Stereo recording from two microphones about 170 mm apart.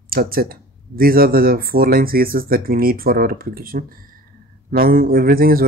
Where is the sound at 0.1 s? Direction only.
60° right (ahead or behind).